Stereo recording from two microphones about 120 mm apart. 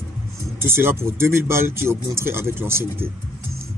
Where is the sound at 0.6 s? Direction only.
20° right (ahead or behind).